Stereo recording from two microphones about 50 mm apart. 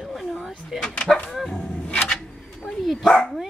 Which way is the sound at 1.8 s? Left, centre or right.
Left.